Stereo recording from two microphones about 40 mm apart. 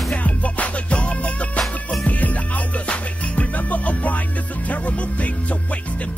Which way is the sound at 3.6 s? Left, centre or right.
Left.